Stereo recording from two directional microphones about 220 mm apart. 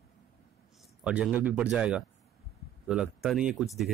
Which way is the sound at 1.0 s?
5° right (ahead or behind).